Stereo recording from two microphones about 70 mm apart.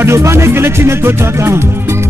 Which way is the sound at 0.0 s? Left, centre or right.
Right.